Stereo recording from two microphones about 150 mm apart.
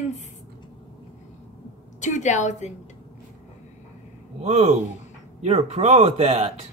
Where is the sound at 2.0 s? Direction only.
55° left (ahead or behind).